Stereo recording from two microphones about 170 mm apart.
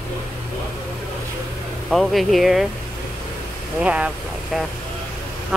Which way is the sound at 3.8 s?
5° right (ahead or behind).